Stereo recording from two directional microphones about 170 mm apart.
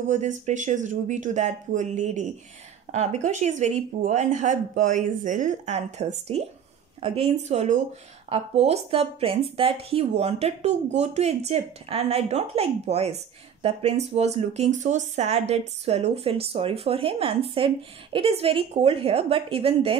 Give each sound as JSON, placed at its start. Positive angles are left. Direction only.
{"t": 0.1, "sound": "speech", "side_deg": -45}